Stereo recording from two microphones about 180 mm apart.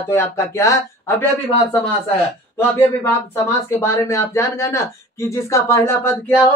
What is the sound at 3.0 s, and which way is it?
A man's voice, 15° left (ahead or behind).